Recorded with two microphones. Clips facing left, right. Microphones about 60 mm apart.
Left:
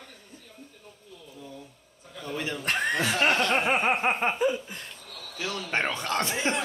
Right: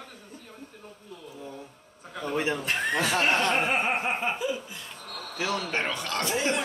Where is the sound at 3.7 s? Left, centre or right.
Left.